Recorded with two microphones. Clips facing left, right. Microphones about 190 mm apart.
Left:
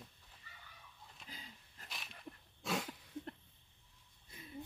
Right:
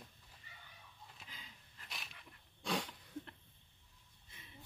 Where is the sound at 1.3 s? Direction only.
40° left (ahead or behind).